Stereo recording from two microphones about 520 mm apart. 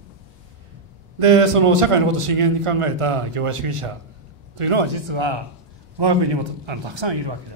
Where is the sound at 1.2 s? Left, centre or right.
Right.